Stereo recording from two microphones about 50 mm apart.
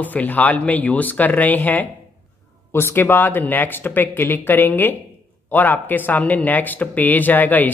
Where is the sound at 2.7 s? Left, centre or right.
Left.